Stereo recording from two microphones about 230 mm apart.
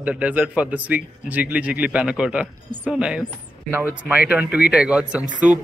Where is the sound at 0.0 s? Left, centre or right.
Centre.